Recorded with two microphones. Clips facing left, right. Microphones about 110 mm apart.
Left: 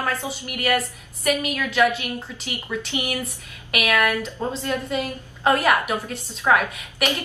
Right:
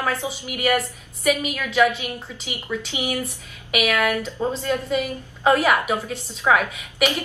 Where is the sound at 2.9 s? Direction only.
15° right (ahead or behind).